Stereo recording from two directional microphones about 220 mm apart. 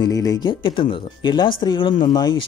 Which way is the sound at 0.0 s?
15° left (ahead or behind).